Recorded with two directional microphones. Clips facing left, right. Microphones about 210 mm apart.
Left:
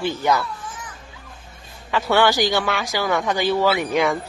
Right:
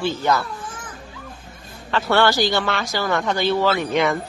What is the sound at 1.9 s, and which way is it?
Speech, 15° left (ahead or behind).